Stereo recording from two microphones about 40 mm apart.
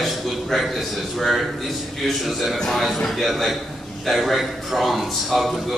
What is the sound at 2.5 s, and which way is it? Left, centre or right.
Speech, centre.